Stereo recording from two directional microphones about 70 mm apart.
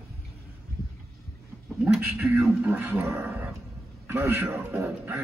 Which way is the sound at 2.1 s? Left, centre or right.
Right.